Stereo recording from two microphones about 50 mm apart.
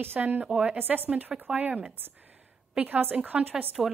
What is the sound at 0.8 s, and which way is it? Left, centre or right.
Speech, right.